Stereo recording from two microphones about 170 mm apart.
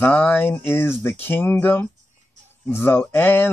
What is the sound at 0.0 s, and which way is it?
Speech, 10° left (ahead or behind).